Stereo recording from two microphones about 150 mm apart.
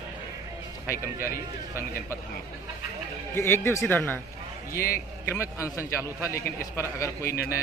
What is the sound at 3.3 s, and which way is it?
Speech, 15° left (ahead or behind).